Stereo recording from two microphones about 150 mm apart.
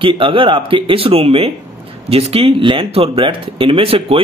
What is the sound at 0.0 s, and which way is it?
Speech, 35° right (ahead or behind).